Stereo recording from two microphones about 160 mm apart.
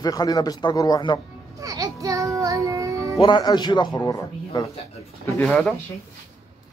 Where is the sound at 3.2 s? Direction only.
30° left (ahead or behind).